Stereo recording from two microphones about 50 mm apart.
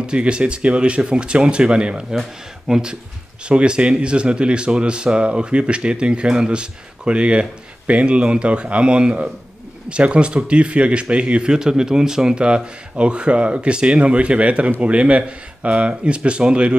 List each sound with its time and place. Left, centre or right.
0.0 s speech: right